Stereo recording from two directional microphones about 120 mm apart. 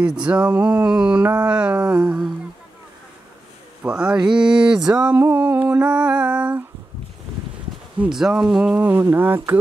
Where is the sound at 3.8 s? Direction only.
10° right (ahead or behind).